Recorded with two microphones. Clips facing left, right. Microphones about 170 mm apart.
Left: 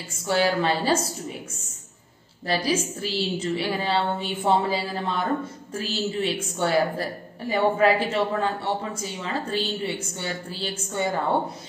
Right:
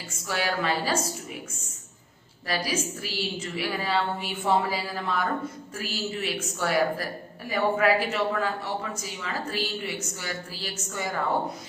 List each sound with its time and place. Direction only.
0.3 s a woman's voice: 30° left (ahead or behind)
2.4 s a woman's voice: 30° left (ahead or behind)